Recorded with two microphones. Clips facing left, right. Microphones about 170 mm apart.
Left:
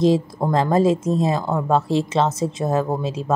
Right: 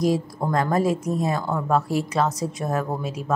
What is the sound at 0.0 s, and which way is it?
A woman's voice, 25° left (ahead or behind).